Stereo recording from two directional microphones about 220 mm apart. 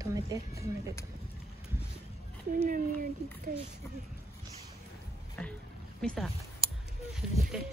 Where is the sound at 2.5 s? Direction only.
40° right (ahead or behind).